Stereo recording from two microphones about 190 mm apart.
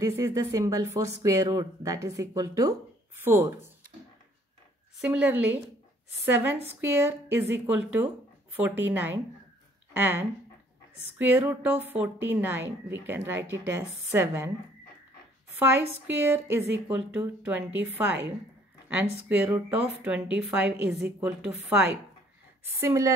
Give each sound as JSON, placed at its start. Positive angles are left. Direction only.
{"t": 0.0, "sound": "a woman's voice", "side_deg": -15}
{"t": 5.0, "sound": "a woman's voice", "side_deg": -5}
{"t": 15.6, "sound": "a woman's voice", "side_deg": -10}